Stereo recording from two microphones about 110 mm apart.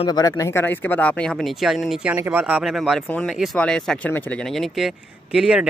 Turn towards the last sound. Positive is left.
turn(degrees=-5)  # may be behind; listen again after turning